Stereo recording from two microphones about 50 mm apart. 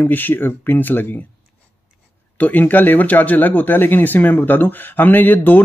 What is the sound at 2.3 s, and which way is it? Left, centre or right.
Speech, left.